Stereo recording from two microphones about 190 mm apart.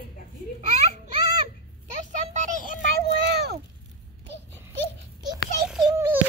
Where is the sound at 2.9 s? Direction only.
60° right (ahead or behind).